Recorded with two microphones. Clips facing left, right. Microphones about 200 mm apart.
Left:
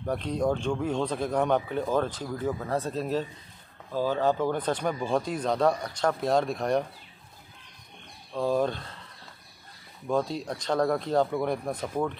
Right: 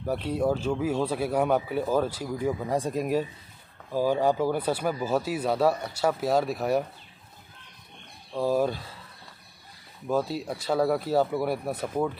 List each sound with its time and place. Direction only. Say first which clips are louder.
0.0 s speech: right 1 dB; 5° right (ahead or behind)
8.4 s speech: right 1 dB; 5° right (ahead or behind)
10.0 s speech: right 1 dB; 5° right (ahead or behind)